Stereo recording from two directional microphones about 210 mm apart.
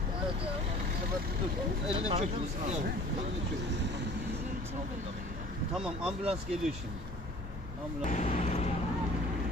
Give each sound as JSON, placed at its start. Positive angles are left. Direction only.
{"t": 2.0, "sound": "speech", "side_deg": -30}
{"t": 5.8, "sound": "speech", "side_deg": -5}
{"t": 8.0, "sound": "speech", "side_deg": 35}